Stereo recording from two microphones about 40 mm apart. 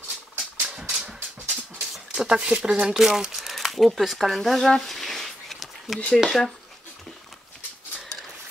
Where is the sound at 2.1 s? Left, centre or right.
Right.